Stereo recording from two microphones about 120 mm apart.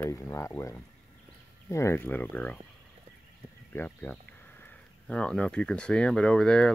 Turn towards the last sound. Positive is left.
turn(degrees=5)  # may be behind; listen again after turning